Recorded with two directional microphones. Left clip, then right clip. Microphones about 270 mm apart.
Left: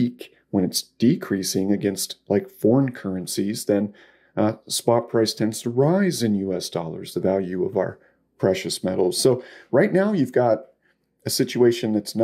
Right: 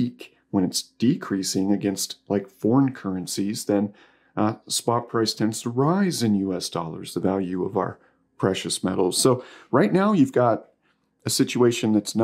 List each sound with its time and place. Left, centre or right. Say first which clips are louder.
0.0 s speech: left 3 dB; centre